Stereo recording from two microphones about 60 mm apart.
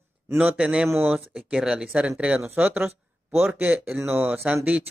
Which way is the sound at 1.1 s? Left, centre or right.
Centre.